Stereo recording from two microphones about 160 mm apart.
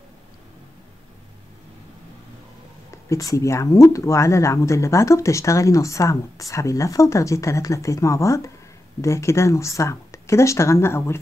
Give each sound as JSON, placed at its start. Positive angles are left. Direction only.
{"t": 2.9, "sound": "speech", "side_deg": 20}